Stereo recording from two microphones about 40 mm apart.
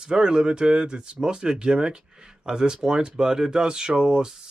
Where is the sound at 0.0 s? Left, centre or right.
Centre.